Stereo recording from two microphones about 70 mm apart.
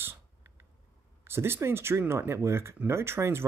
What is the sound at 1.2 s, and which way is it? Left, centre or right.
Speech, right.